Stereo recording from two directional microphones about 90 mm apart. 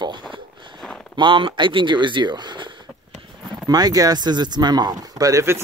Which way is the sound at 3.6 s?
45° right (ahead or behind).